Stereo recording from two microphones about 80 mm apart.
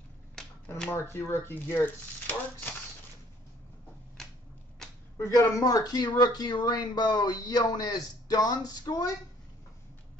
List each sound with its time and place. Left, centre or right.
0.4 s finger snapping: centre
0.8 s speech: left
4.2 s typewriter: centre
5.1 s speech: left
5.6 s speech: left